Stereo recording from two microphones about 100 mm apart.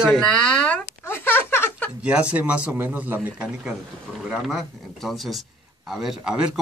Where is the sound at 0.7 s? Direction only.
25° left (ahead or behind).